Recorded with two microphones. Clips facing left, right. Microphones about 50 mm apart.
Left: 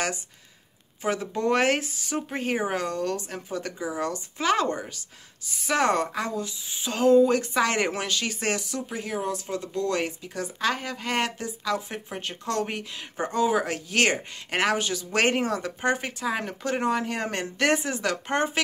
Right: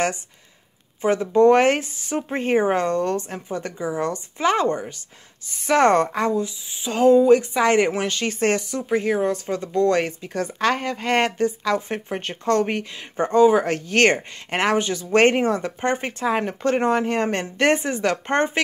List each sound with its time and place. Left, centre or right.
1.0 s speech: right
3.3 s a woman's voice: right
5.7 s speech: right
6.3 s a woman's voice: centre
8.1 s speech: right
12.9 s a woman's voice: right
13.2 s speech: right
14.5 s speech: right